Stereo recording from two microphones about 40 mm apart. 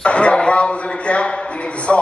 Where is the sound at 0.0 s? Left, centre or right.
Left.